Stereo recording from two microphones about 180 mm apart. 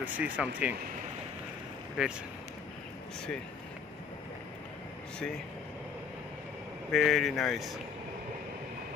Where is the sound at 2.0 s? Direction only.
5° right (ahead or behind).